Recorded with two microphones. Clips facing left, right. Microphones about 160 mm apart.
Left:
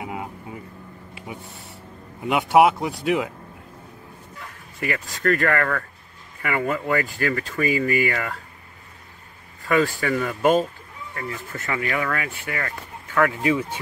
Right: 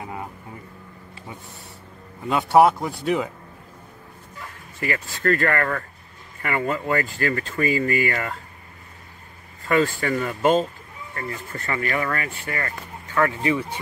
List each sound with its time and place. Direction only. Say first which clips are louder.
0.0 s a sound: left 2 dB; 15° left (ahead or behind)
2.2 s speech: left 1 dB; 15° left (ahead or behind)
2.5 s speech: right 1 dB; 5° left (ahead or behind)
4.7 s speech: even; centre (ahead or behind)
9.7 s speech: even; centre (ahead or behind)